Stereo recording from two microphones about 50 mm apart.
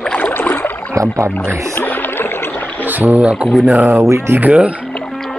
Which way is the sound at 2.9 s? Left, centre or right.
Right.